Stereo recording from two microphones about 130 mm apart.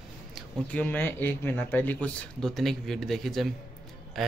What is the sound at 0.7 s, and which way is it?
Speech, 10° left (ahead or behind).